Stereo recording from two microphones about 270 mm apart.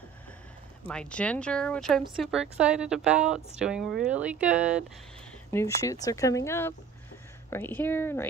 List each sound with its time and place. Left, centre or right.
0.8 s a woman's voice: centre
5.5 s speech: centre